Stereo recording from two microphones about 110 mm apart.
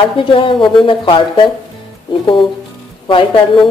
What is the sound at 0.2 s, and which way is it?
Speech, 50° left (ahead or behind).